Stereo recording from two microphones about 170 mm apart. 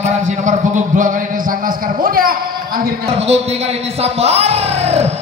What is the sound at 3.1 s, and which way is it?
A man's voice, 40° right (ahead or behind).